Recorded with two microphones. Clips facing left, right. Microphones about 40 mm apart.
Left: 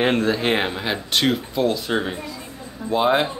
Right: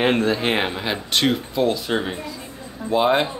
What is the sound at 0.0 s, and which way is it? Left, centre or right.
Speech, centre.